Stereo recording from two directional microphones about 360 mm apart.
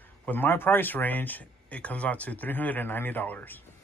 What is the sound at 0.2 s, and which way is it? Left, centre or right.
Speech, centre.